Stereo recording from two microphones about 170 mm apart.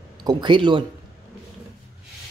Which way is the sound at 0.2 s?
25° right (ahead or behind).